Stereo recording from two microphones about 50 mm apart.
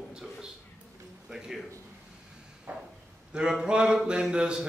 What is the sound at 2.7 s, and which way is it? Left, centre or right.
Speech, right.